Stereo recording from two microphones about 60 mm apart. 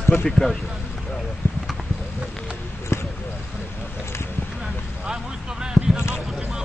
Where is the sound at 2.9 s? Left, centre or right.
Left.